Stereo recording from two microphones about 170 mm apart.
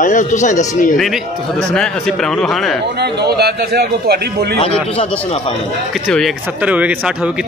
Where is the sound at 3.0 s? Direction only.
70° right (ahead or behind).